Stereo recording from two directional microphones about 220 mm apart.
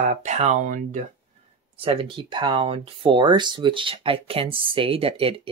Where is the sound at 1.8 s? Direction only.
25° right (ahead or behind).